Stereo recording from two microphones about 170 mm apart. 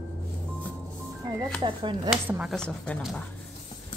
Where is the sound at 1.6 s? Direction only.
25° right (ahead or behind).